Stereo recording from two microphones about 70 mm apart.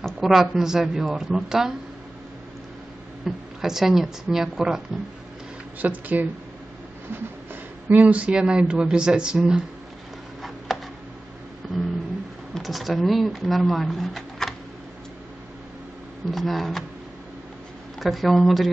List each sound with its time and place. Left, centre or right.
0.0 s speech: centre
3.3 s speech: centre
5.8 s speech: right
7.9 s speech: right
12.5 s speech: centre
16.3 s speech: centre
17.9 s speech: centre